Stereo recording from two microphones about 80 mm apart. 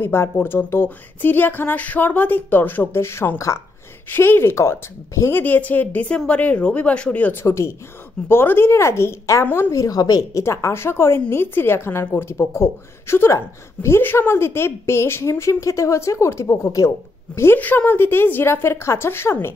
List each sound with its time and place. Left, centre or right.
0.0 s a woman's voice: left
5.4 s speech: left
7.4 s a woman's voice: left
9.7 s a woman's voice: left
10.4 s a woman's voice: left
17.6 s speech: left